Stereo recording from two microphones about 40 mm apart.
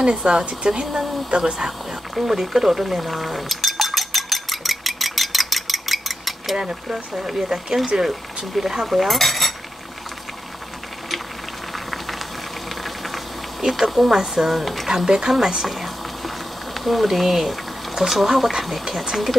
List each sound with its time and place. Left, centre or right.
0.0 s speech: right
2.1 s a sound: centre
6.6 s speech: centre
11.7 s boiling: centre
14.9 s speech: centre
15.6 s boiling: centre